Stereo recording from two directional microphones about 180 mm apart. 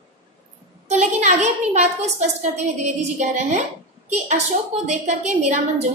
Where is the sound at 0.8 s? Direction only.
40° right (ahead or behind).